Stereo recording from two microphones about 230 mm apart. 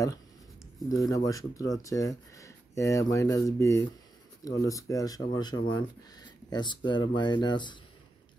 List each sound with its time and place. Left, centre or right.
0.8 s speech: centre